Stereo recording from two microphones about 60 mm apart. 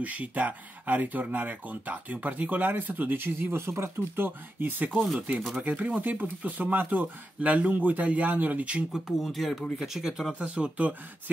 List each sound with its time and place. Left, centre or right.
0.0 s speech: right
4.9 s speech: centre
5.6 s speech: right
8.9 s speech: centre
10.4 s speech: right